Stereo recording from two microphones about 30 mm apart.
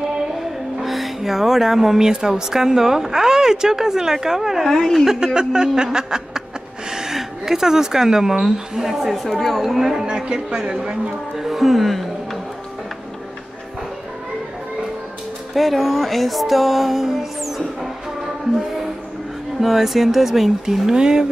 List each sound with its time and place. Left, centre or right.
0.7 s speech: centre
4.6 s a woman's voice: centre
5.0 s a woman's voice: centre
5.9 s snicker: right
6.9 s speech: centre
9.3 s a woman's voice: centre
9.8 s speech: centre
10.0 s a woman's voice: right
11.3 s music: centre
15.5 s speech: centre
17.4 s music: centre
19.6 s a woman's voice: centre; by 21.3 s right